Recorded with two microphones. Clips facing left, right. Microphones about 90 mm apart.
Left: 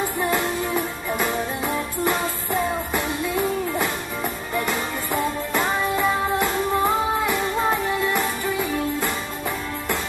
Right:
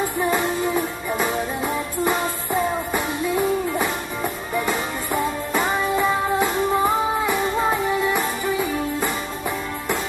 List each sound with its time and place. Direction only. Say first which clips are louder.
0.2 s music: right 2 dB; 5° right (ahead or behind)
4.6 s music: right 1 dB; 5° right (ahead or behind)